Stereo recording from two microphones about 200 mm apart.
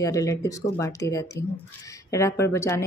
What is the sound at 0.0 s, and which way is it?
Speech, 15° left (ahead or behind).